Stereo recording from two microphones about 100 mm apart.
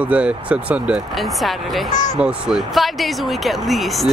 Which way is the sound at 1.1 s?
Centre (ahead or behind).